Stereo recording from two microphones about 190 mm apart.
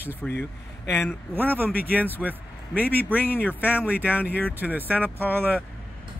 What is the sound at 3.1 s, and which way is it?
Speech, 10° left (ahead or behind).